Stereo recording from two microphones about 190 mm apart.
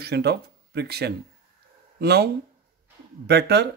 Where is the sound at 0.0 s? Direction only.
60° right (ahead or behind).